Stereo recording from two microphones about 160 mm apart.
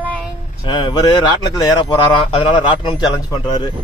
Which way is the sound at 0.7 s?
25° left (ahead or behind).